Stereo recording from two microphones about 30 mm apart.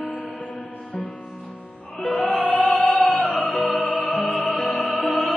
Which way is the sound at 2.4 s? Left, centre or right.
Left.